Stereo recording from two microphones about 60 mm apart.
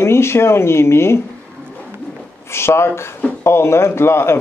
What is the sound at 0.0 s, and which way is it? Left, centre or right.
Speech, left.